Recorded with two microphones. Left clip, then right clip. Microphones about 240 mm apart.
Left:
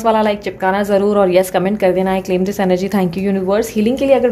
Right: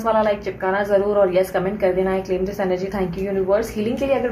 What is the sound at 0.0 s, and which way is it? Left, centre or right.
A woman's voice, left.